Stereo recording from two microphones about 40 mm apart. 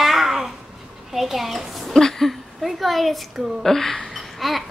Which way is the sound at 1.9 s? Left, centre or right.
Centre.